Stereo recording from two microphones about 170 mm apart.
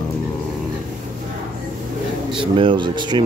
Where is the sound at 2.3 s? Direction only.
30° right (ahead or behind).